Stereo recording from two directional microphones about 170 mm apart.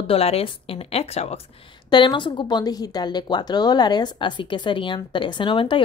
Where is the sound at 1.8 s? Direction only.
25° left (ahead or behind).